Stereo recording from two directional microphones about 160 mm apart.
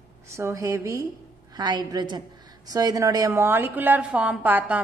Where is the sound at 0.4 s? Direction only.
20° right (ahead or behind).